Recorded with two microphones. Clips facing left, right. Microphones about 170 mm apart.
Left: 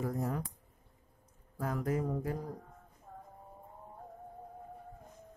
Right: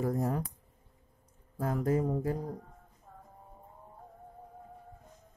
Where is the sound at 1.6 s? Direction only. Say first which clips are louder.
Right 4 dB; 30° right (ahead or behind).